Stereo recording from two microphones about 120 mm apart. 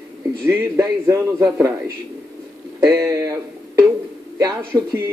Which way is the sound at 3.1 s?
25° right (ahead or behind).